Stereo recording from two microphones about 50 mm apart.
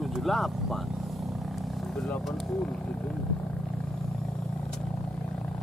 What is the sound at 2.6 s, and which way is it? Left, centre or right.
Speech, centre.